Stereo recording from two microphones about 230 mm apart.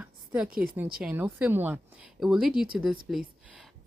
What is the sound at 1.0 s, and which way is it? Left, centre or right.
Speech, centre.